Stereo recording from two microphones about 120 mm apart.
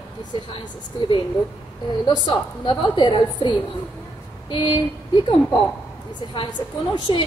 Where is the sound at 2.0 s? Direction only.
40° left (ahead or behind).